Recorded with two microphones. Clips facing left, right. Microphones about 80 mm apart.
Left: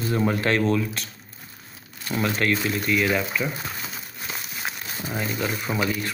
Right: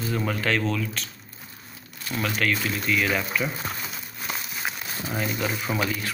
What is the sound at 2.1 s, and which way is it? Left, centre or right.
Speech, left.